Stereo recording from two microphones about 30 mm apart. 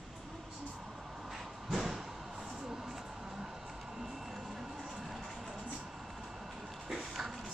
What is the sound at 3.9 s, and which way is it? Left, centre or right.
Music, centre.